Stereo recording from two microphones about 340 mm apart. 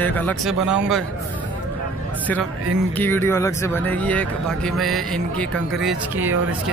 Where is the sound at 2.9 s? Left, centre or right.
Centre.